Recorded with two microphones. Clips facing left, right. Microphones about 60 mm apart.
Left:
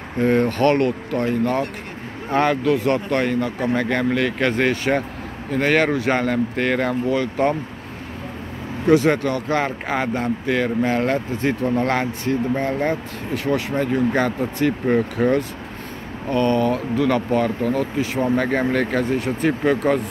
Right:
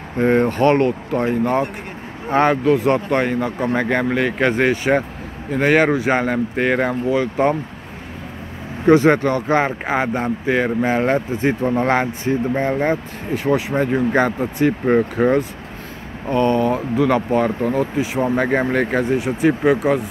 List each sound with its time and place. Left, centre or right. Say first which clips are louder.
0.2 s speech: right 2 dB; right
8.8 s speech: right 3 dB; right; by 20.1 s centre